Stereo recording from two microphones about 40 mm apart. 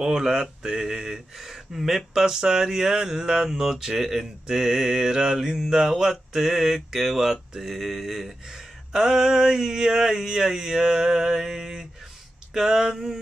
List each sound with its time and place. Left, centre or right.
0.0 s speech: centre